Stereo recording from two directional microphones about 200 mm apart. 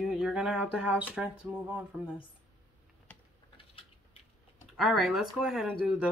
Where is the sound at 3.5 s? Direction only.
25° left (ahead or behind).